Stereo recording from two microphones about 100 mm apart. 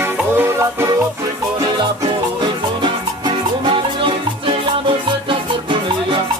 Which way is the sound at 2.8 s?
55° right (ahead or behind).